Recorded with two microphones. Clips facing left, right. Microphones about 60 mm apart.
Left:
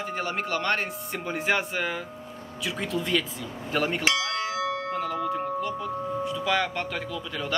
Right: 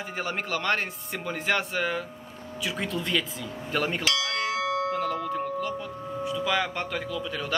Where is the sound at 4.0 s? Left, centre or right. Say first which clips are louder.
Left 1 dB; left.